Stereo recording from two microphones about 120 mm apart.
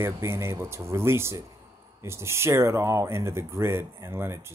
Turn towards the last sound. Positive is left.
turn(degrees=-20)  # may be behind; listen again after turning